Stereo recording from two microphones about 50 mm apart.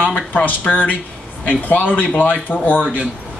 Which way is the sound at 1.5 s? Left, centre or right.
Left.